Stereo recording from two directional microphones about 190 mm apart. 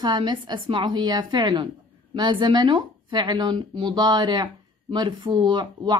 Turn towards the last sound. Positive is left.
turn(degrees=-25)  # may be behind; listen again after turning